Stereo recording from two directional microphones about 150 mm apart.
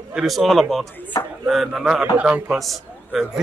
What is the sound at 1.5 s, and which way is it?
A man's voice, centre (ahead or behind).